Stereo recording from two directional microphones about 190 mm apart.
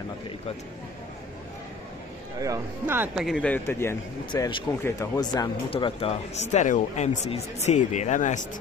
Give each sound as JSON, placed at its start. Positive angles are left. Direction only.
{"t": 2.3, "sound": "a man's voice", "side_deg": -20}